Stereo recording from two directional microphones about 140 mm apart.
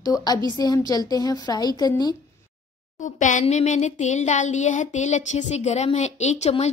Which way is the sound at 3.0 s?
65° left (ahead or behind).